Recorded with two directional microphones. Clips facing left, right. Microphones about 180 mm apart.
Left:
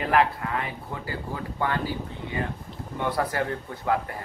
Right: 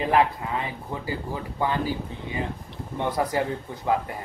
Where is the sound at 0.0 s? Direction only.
20° right (ahead or behind).